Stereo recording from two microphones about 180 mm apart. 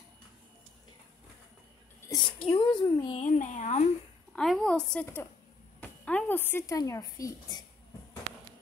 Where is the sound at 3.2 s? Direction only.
45° left (ahead or behind).